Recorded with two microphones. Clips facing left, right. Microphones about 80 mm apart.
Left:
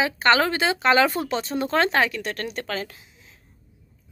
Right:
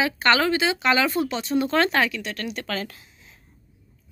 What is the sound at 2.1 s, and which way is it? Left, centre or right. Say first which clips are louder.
Speech: left 1 dB; left.